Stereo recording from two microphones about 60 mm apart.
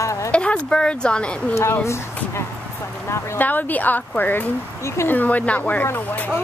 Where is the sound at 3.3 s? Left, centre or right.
Left.